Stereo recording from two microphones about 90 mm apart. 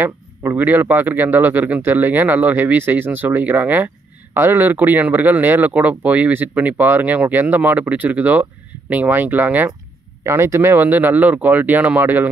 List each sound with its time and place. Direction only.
0.0 s speech: 25° right (ahead or behind)